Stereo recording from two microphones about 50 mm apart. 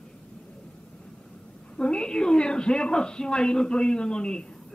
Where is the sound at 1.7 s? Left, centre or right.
Centre.